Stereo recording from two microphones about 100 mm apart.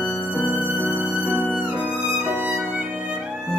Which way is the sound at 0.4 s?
15° right (ahead or behind).